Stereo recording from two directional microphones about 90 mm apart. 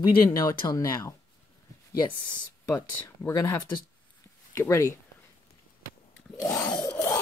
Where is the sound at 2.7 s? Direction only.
30° left (ahead or behind).